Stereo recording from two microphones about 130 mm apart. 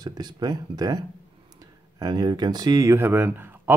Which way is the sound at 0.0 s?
30° right (ahead or behind).